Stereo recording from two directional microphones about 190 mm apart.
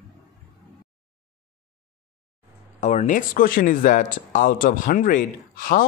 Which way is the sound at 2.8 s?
35° left (ahead or behind).